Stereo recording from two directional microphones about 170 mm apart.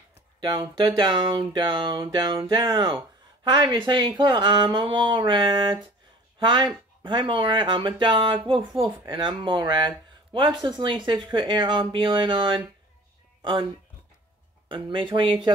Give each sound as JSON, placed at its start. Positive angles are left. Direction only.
{"t": 0.4, "sound": "speech", "side_deg": -25}
{"t": 14.7, "sound": "speech", "side_deg": -30}